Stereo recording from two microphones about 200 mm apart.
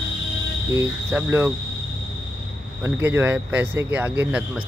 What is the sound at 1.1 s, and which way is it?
Speech, 10° right (ahead or behind).